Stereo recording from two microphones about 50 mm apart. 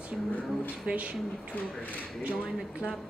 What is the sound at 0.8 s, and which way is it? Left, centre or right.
Speech, right.